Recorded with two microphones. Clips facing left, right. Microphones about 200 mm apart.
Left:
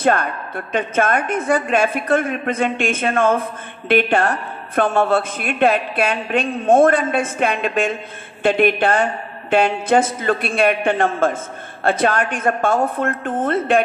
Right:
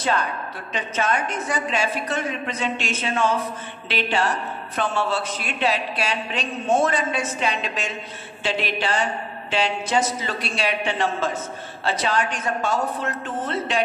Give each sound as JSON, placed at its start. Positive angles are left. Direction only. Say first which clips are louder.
{"t": 0.0, "sound": "a woman's voice", "louder": "left 6 dB", "side_deg": 55}